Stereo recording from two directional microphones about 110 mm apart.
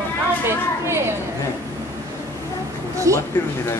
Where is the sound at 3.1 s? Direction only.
30° right (ahead or behind).